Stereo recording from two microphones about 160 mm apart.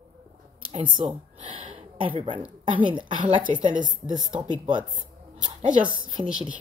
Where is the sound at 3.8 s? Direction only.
25° right (ahead or behind).